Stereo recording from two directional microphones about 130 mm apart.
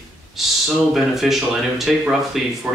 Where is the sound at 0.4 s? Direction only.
Centre (ahead or behind).